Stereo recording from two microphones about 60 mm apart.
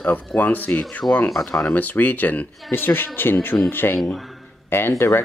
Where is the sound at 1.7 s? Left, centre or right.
Left.